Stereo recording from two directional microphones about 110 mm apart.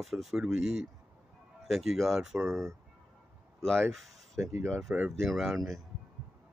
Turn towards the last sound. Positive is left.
turn(degrees=0)  # may be behind; listen again after turning